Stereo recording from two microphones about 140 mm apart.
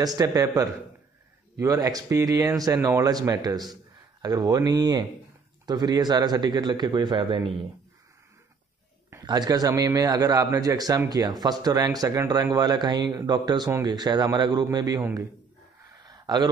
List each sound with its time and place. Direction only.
0.0 s speech: 25° right (ahead or behind)
9.2 s speech: 30° right (ahead or behind)
16.0 s a sound: 30° right (ahead or behind)